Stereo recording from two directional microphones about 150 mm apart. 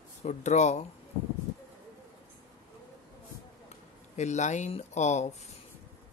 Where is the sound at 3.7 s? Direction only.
50° left (ahead or behind).